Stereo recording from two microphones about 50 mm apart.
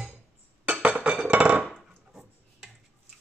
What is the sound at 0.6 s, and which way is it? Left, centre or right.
Chink, right.